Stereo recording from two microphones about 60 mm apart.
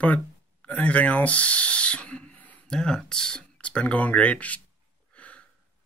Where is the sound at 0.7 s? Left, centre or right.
Left.